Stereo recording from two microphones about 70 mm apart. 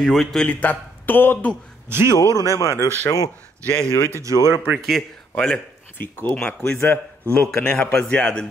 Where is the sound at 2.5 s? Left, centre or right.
Left.